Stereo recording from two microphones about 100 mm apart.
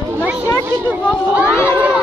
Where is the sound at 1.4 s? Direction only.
25° left (ahead or behind).